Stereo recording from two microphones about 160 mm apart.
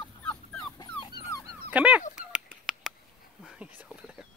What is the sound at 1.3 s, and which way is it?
Dog, 20° left (ahead or behind).